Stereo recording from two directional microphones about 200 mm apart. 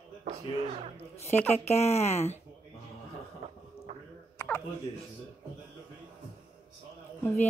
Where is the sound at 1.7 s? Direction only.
30° left (ahead or behind).